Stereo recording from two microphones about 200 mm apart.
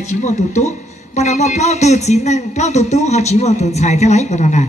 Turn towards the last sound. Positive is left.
turn(degrees=35)  # may be behind; listen again after turning